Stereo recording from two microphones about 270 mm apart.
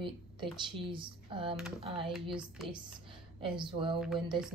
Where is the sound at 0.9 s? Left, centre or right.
Centre.